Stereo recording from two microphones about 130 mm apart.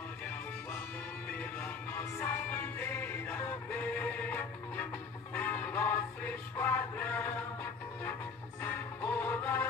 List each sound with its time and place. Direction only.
1.3 s music: 15° left (ahead or behind)